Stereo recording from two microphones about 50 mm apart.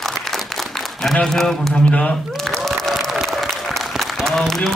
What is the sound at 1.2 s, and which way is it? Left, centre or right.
Speech, centre.